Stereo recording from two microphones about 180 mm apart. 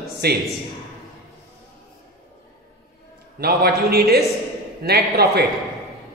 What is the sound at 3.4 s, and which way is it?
A woman's voice, 60° right (ahead or behind).